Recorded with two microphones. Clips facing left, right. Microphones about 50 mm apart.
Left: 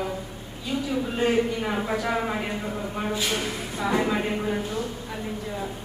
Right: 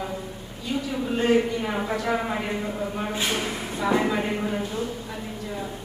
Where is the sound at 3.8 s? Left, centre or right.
Centre.